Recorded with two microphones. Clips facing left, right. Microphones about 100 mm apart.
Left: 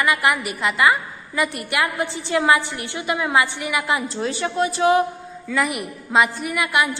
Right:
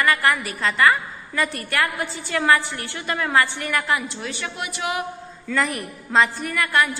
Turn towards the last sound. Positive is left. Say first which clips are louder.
# even
turn(degrees=15)  # may be behind; listen again after turning